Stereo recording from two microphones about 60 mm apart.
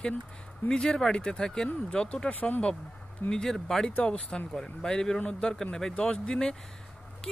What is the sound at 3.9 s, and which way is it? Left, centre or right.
Speech, left.